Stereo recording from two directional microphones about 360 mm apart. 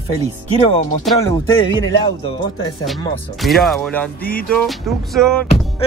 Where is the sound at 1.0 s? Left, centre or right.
Centre.